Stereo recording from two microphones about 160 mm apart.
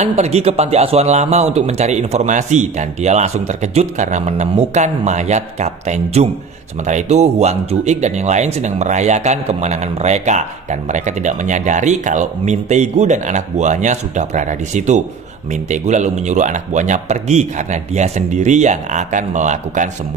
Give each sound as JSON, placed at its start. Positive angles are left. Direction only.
{"t": 0.0, "sound": "speech", "side_deg": -45}